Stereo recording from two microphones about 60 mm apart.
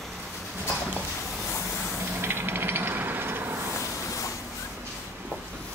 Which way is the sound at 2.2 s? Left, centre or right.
Right.